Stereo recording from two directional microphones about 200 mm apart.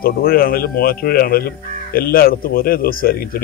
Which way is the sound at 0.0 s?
50° left (ahead or behind).